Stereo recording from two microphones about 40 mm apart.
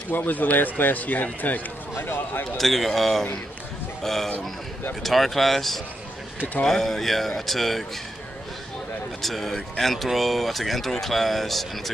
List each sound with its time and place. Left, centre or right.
0.1 s speech: left
2.0 s speech: left
2.5 s a man's voice: centre
9.2 s speech: centre